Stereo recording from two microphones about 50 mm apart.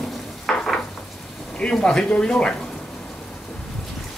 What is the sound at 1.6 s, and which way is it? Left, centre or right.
Speech, centre.